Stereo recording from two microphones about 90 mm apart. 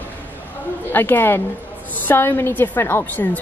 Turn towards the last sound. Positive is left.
turn(degrees=20)  # may be behind; listen again after turning